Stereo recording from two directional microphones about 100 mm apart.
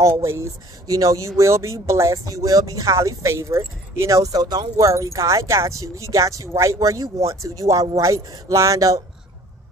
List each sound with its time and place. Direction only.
0.0 s speech: 30° right (ahead or behind)